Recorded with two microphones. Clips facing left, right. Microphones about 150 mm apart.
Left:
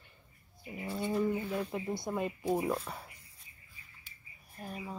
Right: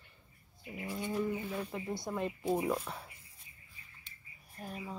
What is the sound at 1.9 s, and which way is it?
Speech, 15° left (ahead or behind).